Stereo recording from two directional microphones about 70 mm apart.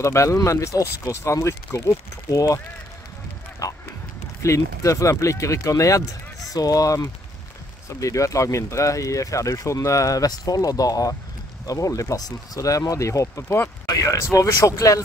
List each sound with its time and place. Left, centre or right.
0.0 s speech: left
3.6 s speech: left
8.0 s speech: left